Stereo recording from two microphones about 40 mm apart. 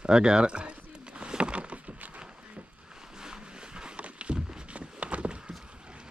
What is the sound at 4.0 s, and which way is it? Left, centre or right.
Walk, right.